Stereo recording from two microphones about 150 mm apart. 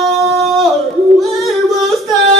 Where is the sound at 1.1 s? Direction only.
Centre (ahead or behind).